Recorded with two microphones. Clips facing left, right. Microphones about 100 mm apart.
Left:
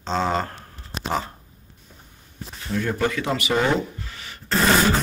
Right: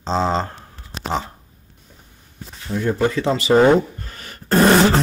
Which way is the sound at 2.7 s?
20° right (ahead or behind).